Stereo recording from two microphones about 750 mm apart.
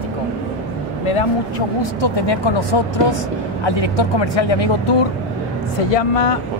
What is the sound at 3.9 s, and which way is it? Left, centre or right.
Speech, left.